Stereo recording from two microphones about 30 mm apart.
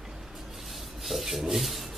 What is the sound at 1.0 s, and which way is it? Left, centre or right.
Rub, centre.